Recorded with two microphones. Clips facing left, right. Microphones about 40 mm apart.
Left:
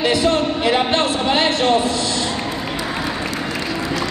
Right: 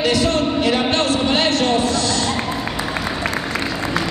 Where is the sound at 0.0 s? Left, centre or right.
Centre.